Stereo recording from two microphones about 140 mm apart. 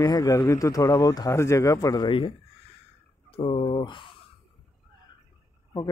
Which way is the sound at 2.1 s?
40° left (ahead or behind).